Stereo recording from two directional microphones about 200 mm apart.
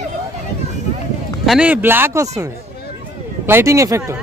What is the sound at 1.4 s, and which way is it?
Speech, 5° right (ahead or behind).